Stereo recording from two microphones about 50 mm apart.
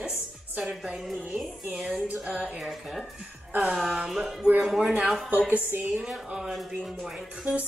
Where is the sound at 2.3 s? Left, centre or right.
Right.